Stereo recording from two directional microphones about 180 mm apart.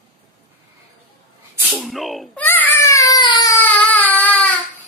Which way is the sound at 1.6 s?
Centre (ahead or behind).